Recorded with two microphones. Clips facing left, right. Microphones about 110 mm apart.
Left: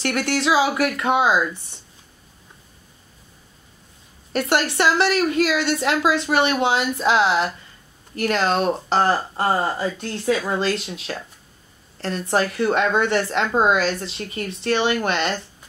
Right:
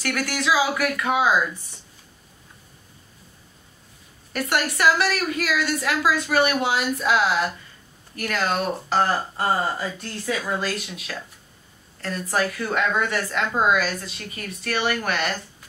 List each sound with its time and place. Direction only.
0.0 s a woman's voice: 25° left (ahead or behind)
4.3 s a woman's voice: 30° left (ahead or behind)